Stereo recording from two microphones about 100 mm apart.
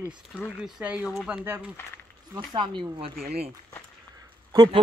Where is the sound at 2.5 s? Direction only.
50° right (ahead or behind).